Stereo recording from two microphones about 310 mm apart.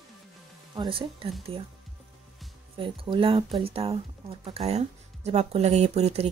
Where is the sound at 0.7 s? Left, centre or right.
Centre.